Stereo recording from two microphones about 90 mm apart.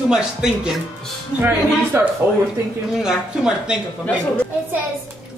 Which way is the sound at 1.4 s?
25° right (ahead or behind).